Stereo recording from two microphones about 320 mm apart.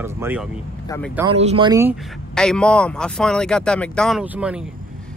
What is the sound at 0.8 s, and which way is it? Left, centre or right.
Speech, centre.